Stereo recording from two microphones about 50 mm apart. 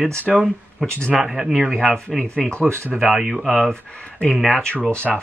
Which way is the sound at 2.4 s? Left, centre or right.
Left.